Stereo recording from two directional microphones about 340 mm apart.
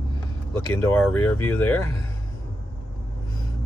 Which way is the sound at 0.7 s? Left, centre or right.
Centre.